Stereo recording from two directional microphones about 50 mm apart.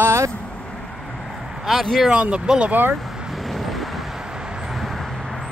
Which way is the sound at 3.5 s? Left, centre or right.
Centre.